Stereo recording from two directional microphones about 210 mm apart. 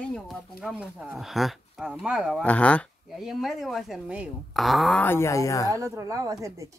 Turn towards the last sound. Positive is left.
turn(degrees=-15)  # may be behind; listen again after turning